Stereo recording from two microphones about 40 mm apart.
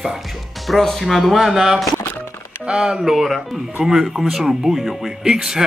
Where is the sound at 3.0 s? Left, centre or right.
Centre.